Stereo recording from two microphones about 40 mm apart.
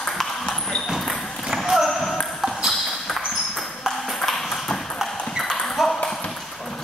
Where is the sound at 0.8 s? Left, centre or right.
Centre.